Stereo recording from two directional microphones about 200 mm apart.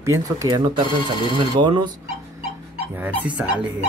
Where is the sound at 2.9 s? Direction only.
10° right (ahead or behind).